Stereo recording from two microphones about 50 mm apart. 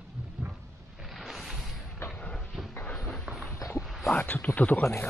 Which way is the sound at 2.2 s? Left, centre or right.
Left.